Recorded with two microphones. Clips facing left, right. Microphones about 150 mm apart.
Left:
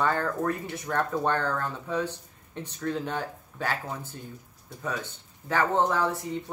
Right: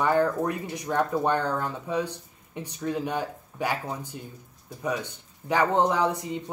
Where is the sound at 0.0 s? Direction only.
15° right (ahead or behind).